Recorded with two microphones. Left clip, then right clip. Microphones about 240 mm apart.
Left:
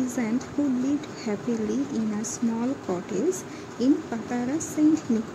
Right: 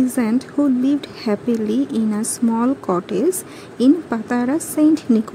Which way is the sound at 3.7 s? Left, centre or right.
Right.